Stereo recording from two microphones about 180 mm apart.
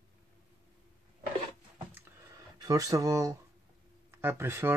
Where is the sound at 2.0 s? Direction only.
15° right (ahead or behind).